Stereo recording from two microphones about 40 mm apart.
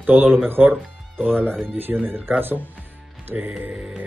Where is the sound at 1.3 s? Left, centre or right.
Centre.